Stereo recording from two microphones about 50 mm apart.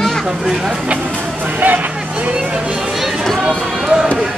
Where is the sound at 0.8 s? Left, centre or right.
Right.